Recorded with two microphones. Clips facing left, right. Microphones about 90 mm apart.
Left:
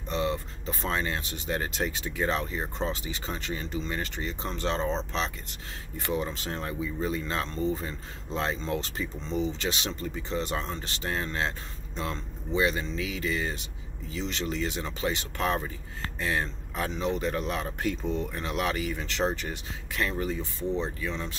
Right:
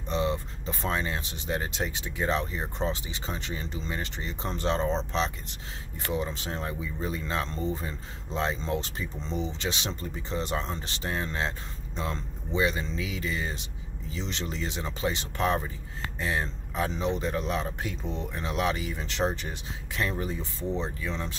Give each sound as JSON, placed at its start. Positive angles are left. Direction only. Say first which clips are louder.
{"t": 0.1, "sound": "speech", "louder": "right 1 dB", "side_deg": -25}
{"t": 4.7, "sound": "speech", "louder": "right 1 dB", "side_deg": -10}
{"t": 6.4, "sound": "speech", "louder": "left 1 dB", "side_deg": -15}